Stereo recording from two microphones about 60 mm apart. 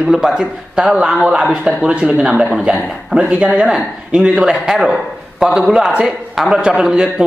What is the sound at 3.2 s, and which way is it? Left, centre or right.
A man's voice, centre.